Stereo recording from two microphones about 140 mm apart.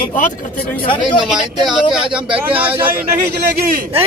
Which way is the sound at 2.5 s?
10° right (ahead or behind).